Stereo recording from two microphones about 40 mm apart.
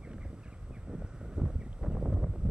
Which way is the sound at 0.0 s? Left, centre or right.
Right.